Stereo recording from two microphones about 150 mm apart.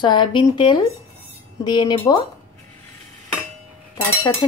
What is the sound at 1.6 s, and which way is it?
Cutlery, 30° left (ahead or behind).